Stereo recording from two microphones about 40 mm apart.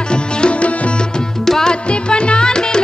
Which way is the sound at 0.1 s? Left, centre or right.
Left.